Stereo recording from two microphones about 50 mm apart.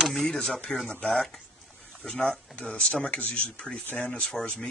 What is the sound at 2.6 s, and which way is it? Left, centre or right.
Speech, left.